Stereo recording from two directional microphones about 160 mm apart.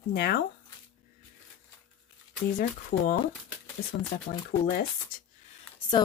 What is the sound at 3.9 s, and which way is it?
Speech, 35° left (ahead or behind).